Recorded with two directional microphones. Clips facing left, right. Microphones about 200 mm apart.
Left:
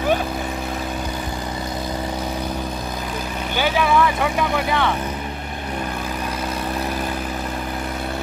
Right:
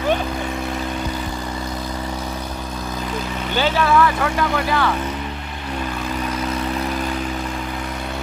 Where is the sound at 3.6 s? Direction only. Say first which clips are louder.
Right 1 dB; 10° left (ahead or behind).